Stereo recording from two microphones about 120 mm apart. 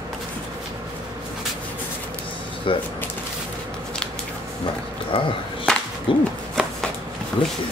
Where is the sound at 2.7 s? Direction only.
45° left (ahead or behind).